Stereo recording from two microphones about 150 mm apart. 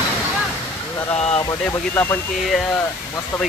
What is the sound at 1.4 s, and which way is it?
Speech, 25° left (ahead or behind).